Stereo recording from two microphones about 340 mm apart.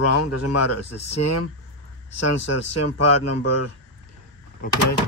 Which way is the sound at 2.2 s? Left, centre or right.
Left.